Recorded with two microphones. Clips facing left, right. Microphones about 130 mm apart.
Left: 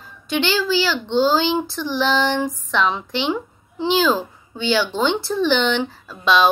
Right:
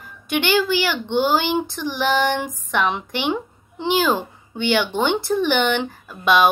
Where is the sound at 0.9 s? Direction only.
15° right (ahead or behind).